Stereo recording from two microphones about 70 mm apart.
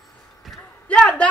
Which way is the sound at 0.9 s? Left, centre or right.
Centre.